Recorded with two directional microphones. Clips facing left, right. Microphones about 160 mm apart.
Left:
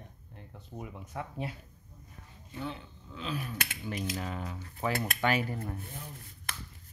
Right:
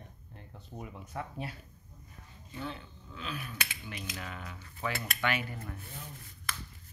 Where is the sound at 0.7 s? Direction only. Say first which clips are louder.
Left 1 dB; 15° left (ahead or behind).